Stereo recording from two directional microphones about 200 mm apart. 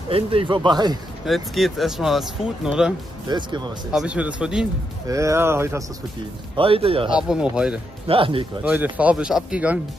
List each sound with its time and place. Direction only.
0.1 s speech: 25° right (ahead or behind)
1.2 s speech: centre (ahead or behind)
3.3 s speech: 20° right (ahead or behind)
3.9 s speech: 5° right (ahead or behind)
5.0 s speech: 15° right (ahead or behind)
6.5 s speech: 25° right (ahead or behind)
7.1 s speech: 5° right (ahead or behind)
8.1 s speech: 25° right (ahead or behind)
8.6 s speech: 5° right (ahead or behind)